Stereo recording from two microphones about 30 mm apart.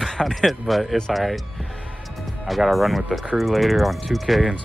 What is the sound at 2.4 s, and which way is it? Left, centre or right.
Speech, centre.